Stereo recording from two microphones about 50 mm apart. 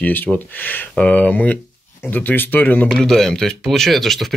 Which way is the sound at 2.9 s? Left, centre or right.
Centre.